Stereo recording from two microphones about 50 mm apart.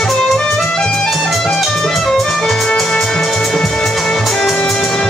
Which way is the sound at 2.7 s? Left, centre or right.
Centre.